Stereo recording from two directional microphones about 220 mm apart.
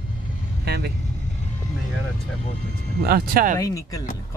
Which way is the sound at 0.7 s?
50° right (ahead or behind).